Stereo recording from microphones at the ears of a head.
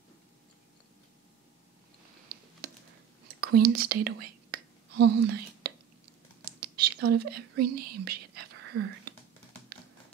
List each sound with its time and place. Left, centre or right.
2.2 s whispering: right
6.4 s speech: right